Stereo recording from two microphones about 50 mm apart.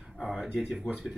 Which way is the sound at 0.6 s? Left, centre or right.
Centre.